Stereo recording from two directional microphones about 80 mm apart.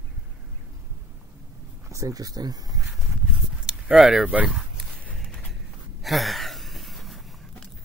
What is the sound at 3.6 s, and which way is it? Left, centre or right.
Speech, centre.